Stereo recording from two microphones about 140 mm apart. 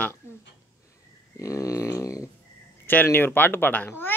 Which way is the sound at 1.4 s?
20° left (ahead or behind).